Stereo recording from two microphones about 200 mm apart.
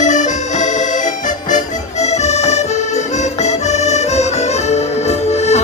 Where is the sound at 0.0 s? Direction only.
35° left (ahead or behind).